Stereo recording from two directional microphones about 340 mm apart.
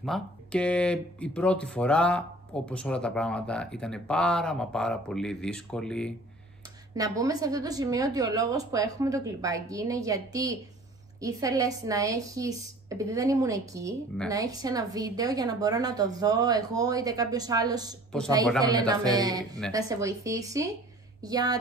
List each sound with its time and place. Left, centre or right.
0.0 s speech: centre
7.0 s a woman's voice: centre
18.1 s speech: centre
18.6 s a woman's voice: centre